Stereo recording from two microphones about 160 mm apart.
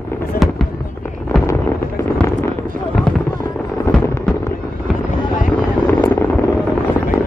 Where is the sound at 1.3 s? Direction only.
20° left (ahead or behind).